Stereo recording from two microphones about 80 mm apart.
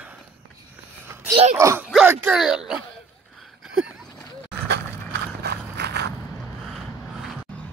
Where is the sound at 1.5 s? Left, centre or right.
Right.